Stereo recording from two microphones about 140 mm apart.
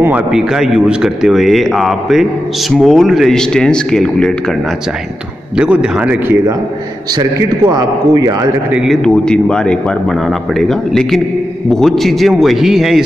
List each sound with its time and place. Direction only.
0.0 s a man's voice: 10° right (ahead or behind)
5.6 s a man's voice: 5° right (ahead or behind)
7.2 s a man's voice: 30° right (ahead or behind)
8.7 s a man's voice: centre (ahead or behind)